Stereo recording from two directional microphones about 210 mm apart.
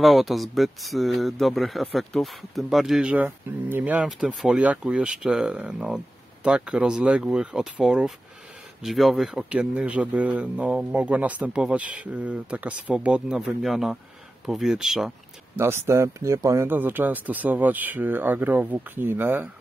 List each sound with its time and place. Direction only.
0.0 s speech: centre (ahead or behind)